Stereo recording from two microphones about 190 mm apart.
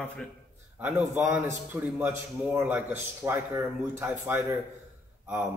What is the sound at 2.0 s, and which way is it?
A man's voice, 10° right (ahead or behind).